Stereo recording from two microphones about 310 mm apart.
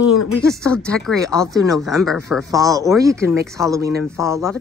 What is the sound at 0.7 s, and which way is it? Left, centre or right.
Speech, centre.